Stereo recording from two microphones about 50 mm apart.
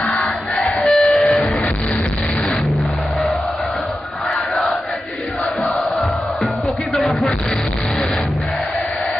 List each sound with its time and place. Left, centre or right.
0.6 s music: centre
1.0 s train: centre
5.9 s music: centre